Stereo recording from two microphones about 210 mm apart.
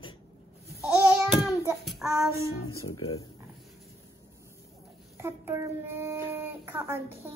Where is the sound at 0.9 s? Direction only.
Centre (ahead or behind).